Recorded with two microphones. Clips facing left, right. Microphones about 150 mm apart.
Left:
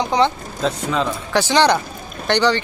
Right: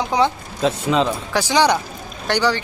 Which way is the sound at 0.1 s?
10° right (ahead or behind).